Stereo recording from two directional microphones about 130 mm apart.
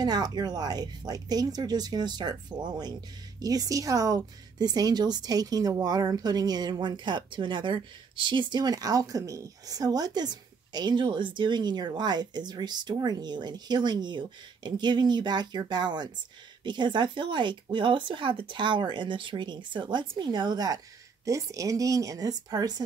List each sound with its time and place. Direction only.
0.0 s speech: 30° right (ahead or behind)